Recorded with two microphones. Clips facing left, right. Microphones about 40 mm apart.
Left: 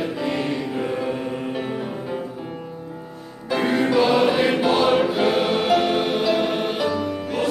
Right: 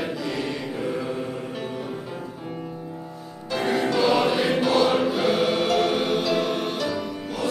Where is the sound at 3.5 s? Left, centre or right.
Centre.